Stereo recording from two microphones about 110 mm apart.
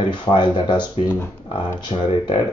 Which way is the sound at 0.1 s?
45° left (ahead or behind).